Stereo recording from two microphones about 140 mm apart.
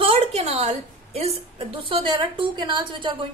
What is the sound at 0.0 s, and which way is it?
A woman's voice, 40° right (ahead or behind).